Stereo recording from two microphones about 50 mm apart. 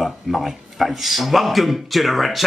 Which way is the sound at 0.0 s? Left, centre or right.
Centre.